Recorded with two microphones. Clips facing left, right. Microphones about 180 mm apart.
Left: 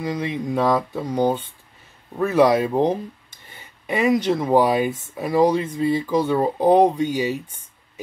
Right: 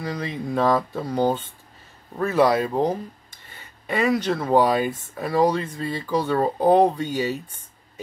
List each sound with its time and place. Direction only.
0.0 s speech: 15° left (ahead or behind)